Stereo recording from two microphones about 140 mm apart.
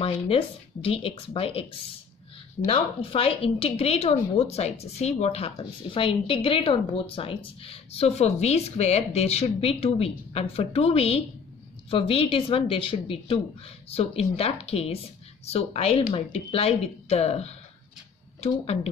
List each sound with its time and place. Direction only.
0.8 s speech: 40° left (ahead or behind)
5.6 s speech: 40° left (ahead or behind)